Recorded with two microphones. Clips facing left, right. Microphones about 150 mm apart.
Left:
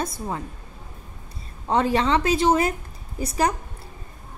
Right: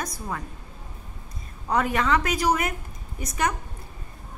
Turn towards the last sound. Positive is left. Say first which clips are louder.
# left 4 dB
turn(degrees=30)  # may be behind; listen again after turning